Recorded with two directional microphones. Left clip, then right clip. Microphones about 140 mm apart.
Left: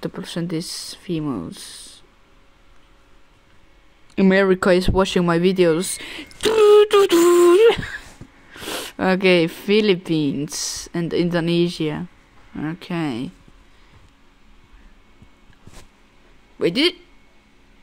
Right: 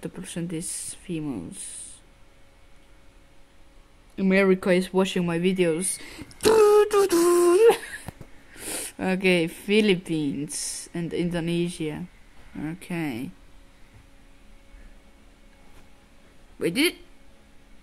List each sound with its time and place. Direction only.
0.0 s speech: 25° left (ahead or behind)
4.1 s speech: 65° left (ahead or behind); by 6.2 s 35° left (ahead or behind)
6.3 s a sound: 35° left (ahead or behind)
8.5 s speech: 20° left (ahead or behind)
16.5 s speech: 20° left (ahead or behind)